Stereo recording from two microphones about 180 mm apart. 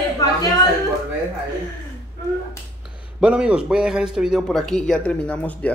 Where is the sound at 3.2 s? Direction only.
5° right (ahead or behind).